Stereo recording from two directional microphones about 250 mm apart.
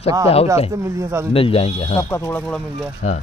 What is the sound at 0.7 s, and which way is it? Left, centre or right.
Speech, centre.